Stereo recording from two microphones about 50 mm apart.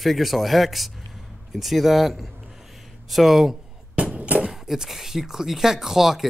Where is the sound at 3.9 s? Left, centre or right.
Right.